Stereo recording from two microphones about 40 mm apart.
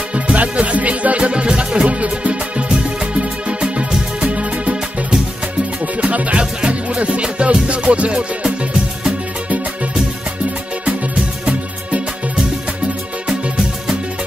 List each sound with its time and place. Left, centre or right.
0.1 s music: right
5.9 s music: right
10.9 s music: right
13.3 s music: centre